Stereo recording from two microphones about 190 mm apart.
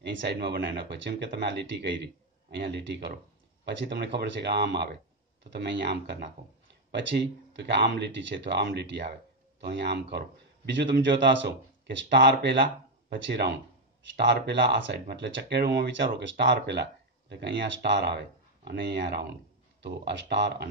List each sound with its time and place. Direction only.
0.3 s speech: 60° right (ahead or behind)